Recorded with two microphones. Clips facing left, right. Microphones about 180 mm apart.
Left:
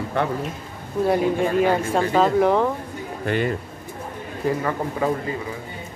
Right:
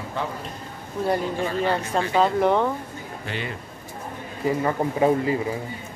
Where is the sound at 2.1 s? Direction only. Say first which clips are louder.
Left 2 dB; centre (ahead or behind).